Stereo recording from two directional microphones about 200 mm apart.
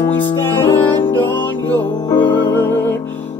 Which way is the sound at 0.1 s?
10° left (ahead or behind).